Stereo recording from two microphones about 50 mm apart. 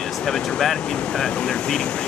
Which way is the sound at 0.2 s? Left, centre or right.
Centre.